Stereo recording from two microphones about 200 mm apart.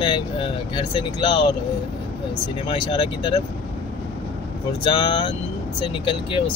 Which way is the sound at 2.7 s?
25° left (ahead or behind).